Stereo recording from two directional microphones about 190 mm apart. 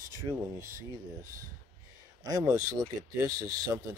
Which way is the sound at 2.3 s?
20° right (ahead or behind).